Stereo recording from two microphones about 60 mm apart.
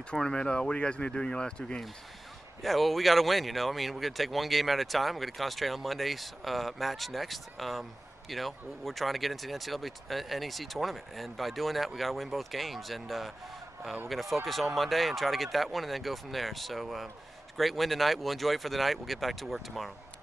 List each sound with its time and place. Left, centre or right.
0.1 s speech: centre
2.6 s speech: centre